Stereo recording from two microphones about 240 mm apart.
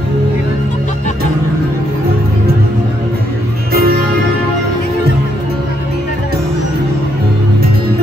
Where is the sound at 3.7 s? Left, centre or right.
Right.